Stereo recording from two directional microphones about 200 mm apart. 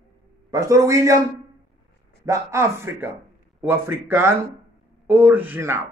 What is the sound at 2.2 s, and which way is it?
A man's voice, 15° right (ahead or behind).